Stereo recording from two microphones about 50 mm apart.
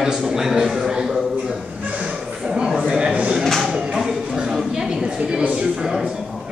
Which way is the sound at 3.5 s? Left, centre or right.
Centre.